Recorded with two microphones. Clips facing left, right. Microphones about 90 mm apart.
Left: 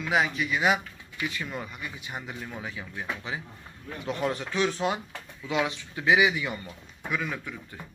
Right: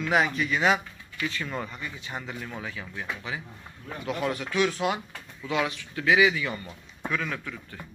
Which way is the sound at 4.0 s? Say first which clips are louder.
Even; 25° left (ahead or behind).